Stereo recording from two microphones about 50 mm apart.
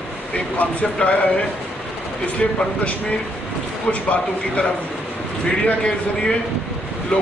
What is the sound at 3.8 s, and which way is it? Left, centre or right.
Speech, left.